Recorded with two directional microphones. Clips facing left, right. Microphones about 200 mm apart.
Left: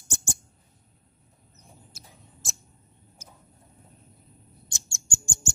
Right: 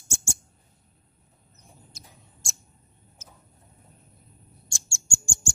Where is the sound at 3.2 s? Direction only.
10° left (ahead or behind).